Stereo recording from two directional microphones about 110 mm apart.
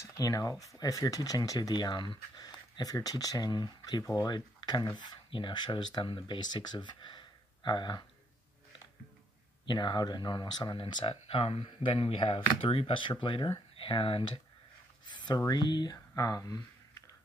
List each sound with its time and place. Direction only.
0.0 s speech: 30° left (ahead or behind)
9.7 s speech: 45° left (ahead or behind)
15.0 s speech: 40° left (ahead or behind)